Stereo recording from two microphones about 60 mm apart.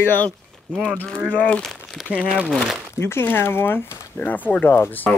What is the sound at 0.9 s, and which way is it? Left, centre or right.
Speech, left.